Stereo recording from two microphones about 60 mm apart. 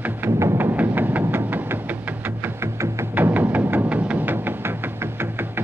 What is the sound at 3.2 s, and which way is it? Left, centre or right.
Music, right.